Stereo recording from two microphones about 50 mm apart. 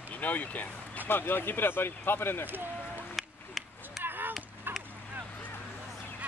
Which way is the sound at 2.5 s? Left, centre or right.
Right.